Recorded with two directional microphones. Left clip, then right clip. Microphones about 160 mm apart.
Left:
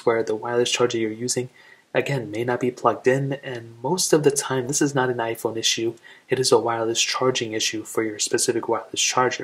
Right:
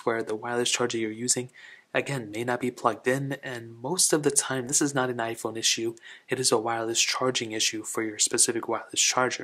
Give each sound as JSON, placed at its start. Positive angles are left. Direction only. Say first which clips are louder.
{"t": 0.0, "sound": "speech", "louder": "left 7 dB", "side_deg": -30}